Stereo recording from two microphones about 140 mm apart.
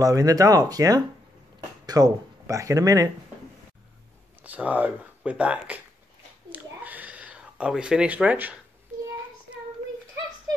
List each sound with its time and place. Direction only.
0.0 s speech: 25° right (ahead or behind)
4.4 s speech: 10° right (ahead or behind)
6.5 s a sound: 10° right (ahead or behind)